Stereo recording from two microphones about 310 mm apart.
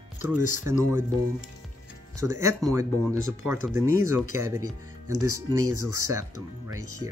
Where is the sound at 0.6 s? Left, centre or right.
Centre.